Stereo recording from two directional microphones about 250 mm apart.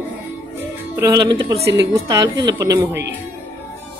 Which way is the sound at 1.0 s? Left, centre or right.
Centre.